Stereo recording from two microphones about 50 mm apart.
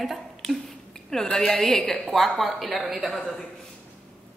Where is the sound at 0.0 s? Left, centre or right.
Centre.